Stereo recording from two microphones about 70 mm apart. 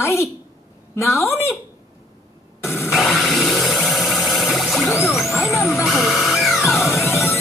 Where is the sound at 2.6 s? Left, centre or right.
Left.